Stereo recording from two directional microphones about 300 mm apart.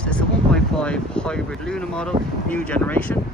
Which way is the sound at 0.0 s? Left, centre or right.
Centre.